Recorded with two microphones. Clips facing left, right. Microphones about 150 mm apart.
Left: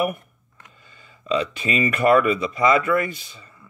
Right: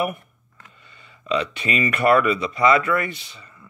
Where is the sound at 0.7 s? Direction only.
40° left (ahead or behind).